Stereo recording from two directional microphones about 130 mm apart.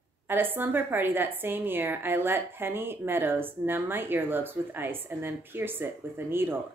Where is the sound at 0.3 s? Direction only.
15° right (ahead or behind).